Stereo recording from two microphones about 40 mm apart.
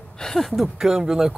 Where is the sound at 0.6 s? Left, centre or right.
Centre.